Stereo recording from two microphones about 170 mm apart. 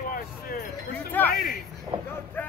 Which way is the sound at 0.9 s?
10° left (ahead or behind).